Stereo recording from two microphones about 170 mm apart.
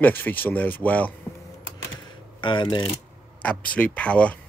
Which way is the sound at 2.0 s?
25° left (ahead or behind).